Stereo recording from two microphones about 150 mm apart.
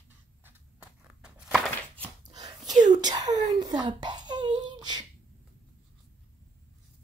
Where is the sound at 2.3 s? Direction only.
25° right (ahead or behind).